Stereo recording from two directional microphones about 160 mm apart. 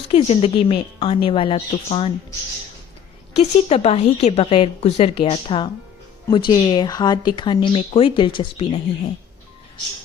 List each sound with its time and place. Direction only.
0.1 s a woman's voice: 35° left (ahead or behind)
3.3 s a woman's voice: 40° left (ahead or behind)